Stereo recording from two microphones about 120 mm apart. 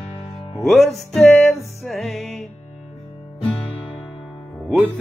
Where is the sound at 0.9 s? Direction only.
5° left (ahead or behind).